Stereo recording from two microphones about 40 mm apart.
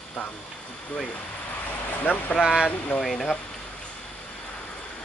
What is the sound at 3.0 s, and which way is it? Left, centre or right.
Speech, centre.